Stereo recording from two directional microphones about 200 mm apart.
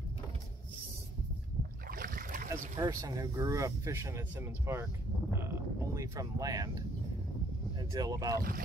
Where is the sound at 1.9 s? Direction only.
45° right (ahead or behind).